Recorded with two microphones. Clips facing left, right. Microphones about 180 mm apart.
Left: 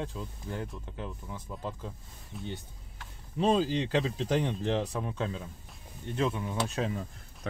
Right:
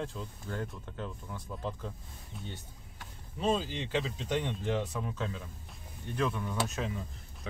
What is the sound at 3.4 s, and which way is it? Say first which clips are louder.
Speech: left 5 dB; 35° left (ahead or behind).